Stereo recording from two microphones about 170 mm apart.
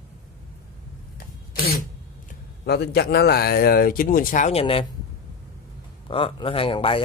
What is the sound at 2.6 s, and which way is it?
Speech, 70° left (ahead or behind).